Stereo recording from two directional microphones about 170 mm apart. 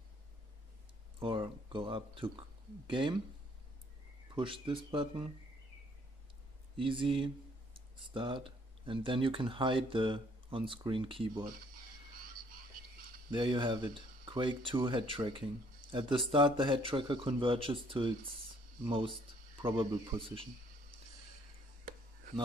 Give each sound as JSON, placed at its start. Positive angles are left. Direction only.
{"t": 1.2, "sound": "speech", "side_deg": -30}
{"t": 4.4, "sound": "speech", "side_deg": -30}
{"t": 6.8, "sound": "speech", "side_deg": -30}
{"t": 13.3, "sound": "speech", "side_deg": -30}